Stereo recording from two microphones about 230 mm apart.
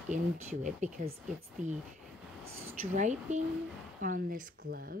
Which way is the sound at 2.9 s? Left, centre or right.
Right.